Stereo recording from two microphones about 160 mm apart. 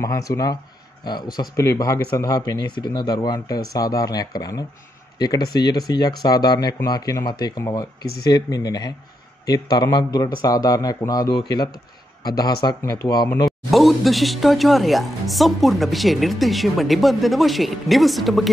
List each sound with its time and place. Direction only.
0.0 s speech: 20° left (ahead or behind)
13.5 s speech: centre (ahead or behind)